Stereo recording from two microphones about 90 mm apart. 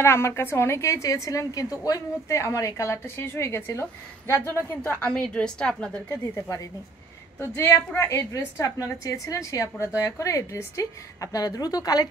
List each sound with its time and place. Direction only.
0.0 s a woman's voice: 30° left (ahead or behind)
4.8 s a woman's voice: 20° left (ahead or behind)
7.3 s a woman's voice: 30° left (ahead or behind)